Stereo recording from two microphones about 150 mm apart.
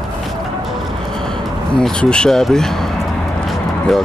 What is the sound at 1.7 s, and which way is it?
Speech, 5° left (ahead or behind).